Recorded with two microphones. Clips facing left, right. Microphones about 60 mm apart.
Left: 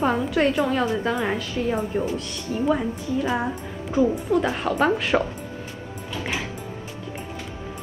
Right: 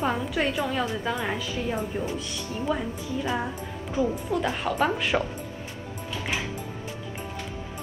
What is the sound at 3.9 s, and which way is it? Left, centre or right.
A woman's voice, centre.